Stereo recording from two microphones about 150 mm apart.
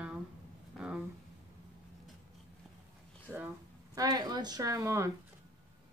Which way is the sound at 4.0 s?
25° right (ahead or behind).